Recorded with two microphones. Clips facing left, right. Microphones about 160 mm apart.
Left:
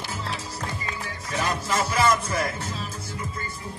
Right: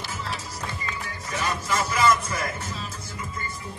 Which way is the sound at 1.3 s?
35° left (ahead or behind).